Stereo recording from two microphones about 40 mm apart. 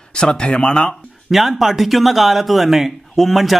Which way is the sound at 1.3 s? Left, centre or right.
Centre.